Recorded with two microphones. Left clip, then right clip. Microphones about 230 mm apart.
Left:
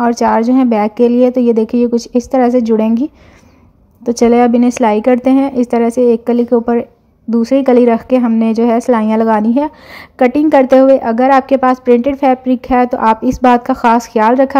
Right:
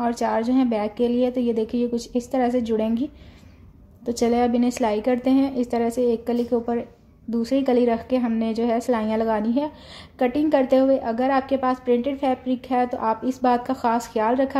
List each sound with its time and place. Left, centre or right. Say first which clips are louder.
0.0 s a woman's voice: left 11 dB; left
4.0 s a woman's voice: left 11 dB; left